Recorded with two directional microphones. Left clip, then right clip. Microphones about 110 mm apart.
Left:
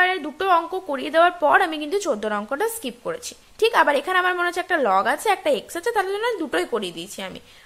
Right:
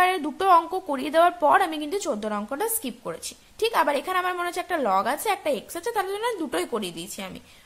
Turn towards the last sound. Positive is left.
turn(degrees=-10)  # may be behind; listen again after turning